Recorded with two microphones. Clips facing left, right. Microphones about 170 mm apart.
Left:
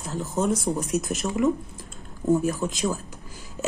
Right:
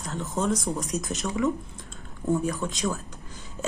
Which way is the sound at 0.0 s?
Centre (ahead or behind).